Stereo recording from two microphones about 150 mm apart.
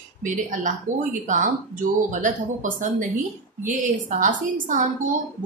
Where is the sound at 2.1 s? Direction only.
60° right (ahead or behind).